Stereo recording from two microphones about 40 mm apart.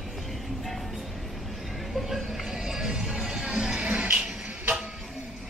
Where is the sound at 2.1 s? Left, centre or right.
Centre.